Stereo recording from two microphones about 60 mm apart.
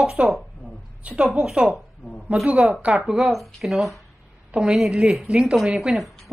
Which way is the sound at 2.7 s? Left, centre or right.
Right.